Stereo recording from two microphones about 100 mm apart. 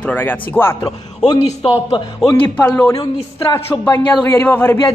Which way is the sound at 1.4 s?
65° left (ahead or behind).